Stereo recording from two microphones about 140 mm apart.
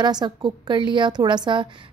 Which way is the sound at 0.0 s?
30° right (ahead or behind).